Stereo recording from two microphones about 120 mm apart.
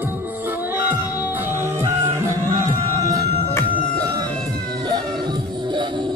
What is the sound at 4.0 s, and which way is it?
Chicken, 30° right (ahead or behind).